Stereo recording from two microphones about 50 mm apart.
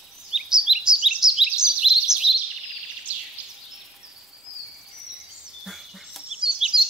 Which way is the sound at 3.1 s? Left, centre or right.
Right.